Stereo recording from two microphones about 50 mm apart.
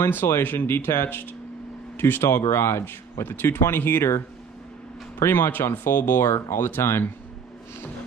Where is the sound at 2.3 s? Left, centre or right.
Left.